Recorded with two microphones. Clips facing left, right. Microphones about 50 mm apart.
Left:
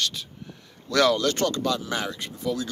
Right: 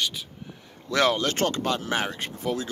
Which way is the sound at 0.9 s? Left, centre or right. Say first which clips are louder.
Left 2 dB; right.